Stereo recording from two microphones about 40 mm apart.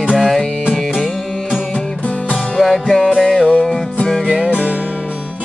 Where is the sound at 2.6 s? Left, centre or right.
Centre.